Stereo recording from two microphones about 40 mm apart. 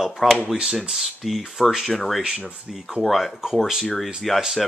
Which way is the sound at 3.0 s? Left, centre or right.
Centre.